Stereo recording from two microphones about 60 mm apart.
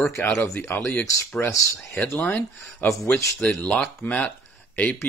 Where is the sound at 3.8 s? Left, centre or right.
Left.